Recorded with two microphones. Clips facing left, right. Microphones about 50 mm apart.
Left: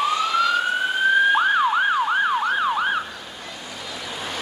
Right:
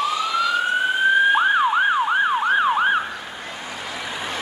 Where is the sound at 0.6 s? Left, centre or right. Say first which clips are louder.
Right 2 dB; centre.